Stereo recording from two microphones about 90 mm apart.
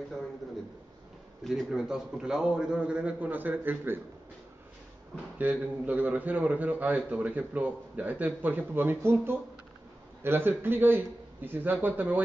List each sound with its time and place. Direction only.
1.4 s a man's voice: centre (ahead or behind); by 4.0 s 20° right (ahead or behind)
5.1 s a man's voice: 20° right (ahead or behind)